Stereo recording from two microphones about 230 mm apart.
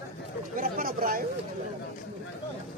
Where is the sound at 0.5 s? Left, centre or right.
Right.